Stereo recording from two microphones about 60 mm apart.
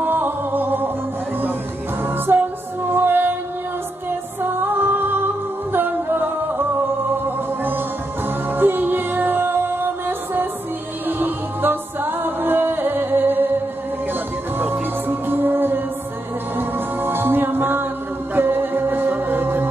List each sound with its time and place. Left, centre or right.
0.0 s music: right
2.0 s music: right
4.4 s music: right
14.6 s music: right